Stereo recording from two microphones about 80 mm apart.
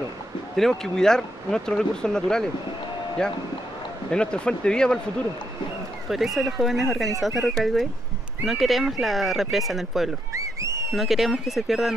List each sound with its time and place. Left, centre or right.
0.6 s speech: centre
4.1 s speech: centre
6.0 s speech: centre
10.3 s a sound: right
10.9 s speech: centre